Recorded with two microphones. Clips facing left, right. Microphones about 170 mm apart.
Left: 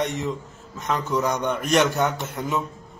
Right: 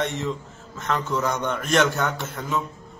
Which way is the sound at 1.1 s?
15° left (ahead or behind).